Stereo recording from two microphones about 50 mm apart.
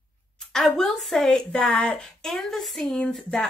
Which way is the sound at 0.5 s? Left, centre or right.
Centre.